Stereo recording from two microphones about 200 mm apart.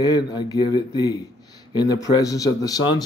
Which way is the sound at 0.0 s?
20° left (ahead or behind).